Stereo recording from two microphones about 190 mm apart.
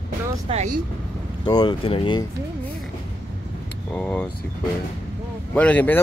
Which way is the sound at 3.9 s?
5° left (ahead or behind).